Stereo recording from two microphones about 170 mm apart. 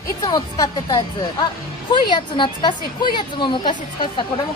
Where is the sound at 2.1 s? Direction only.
25° left (ahead or behind).